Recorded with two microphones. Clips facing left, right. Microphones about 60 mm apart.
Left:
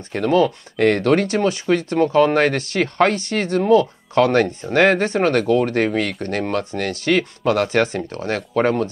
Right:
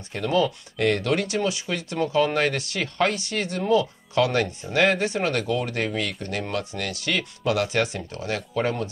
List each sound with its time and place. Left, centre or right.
0.1 s speech: left